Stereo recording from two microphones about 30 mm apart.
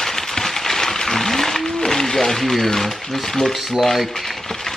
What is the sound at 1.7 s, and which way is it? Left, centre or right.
Speech, centre.